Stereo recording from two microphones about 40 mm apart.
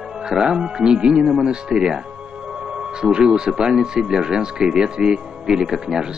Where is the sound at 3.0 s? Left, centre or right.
Centre.